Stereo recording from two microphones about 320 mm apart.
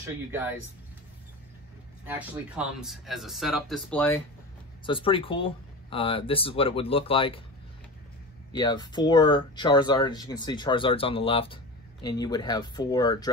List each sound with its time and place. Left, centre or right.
0.3 s speech: centre
2.0 s speech: centre
4.8 s speech: centre
8.5 s speech: centre